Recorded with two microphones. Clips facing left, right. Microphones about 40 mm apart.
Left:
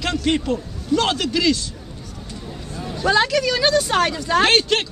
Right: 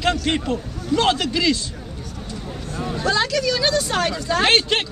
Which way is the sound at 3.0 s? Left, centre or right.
Centre.